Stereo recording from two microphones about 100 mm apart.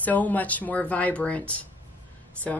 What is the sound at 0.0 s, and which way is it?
A woman's voice, 15° left (ahead or behind).